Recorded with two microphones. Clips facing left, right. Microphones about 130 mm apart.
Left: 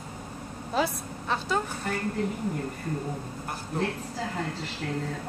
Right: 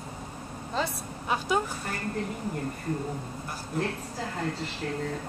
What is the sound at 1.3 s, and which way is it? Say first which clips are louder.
Speech: right 1 dB; 10° right (ahead or behind).